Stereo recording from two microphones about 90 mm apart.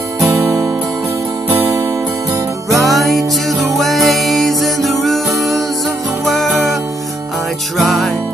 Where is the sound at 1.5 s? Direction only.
25° right (ahead or behind).